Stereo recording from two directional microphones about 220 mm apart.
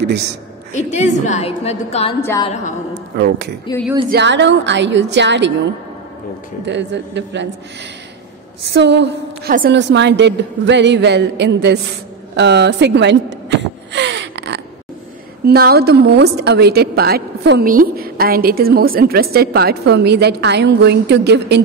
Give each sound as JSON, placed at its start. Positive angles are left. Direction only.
{"t": 0.0, "sound": "a woman's voice", "side_deg": -50}
{"t": 0.7, "sound": "a woman's voice", "side_deg": 30}
{"t": 3.2, "sound": "a woman's voice", "side_deg": -50}
{"t": 6.6, "sound": "a woman's voice", "side_deg": -50}
{"t": 8.6, "sound": "a woman's voice", "side_deg": -50}
{"t": 12.4, "sound": "a sound", "side_deg": -50}
{"t": 15.4, "sound": "a woman's voice", "side_deg": -45}